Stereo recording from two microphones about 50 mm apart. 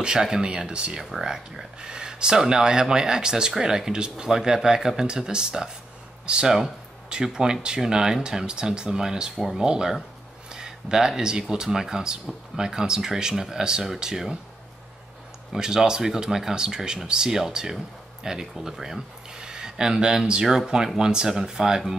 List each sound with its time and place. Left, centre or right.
0.0 s speech: centre
1.1 s speech: centre
15.5 s speech: centre